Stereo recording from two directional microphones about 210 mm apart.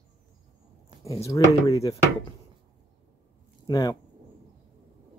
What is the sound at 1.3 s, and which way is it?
Speech, 15° left (ahead or behind).